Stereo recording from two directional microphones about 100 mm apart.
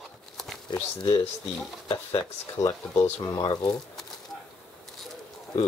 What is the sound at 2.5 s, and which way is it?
Speech, 35° left (ahead or behind).